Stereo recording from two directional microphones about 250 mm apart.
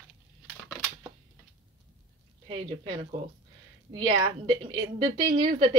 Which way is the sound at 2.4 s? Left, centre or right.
Right.